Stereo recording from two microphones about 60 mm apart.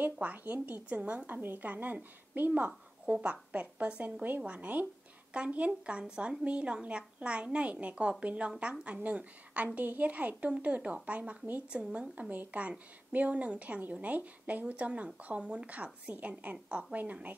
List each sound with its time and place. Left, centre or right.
0.0 s speech: right